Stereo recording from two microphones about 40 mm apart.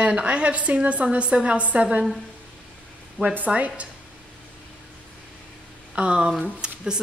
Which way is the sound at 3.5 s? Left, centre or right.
Right.